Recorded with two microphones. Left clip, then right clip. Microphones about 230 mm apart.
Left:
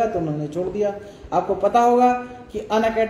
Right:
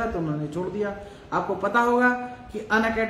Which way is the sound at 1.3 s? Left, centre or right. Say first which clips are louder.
Left 5 dB; right.